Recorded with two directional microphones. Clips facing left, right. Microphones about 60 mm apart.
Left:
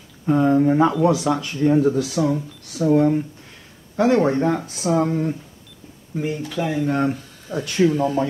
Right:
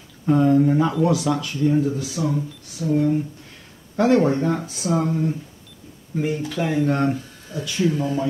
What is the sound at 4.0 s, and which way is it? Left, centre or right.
Speech, centre.